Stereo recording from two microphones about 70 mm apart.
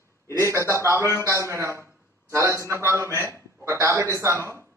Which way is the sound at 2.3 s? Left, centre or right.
Right.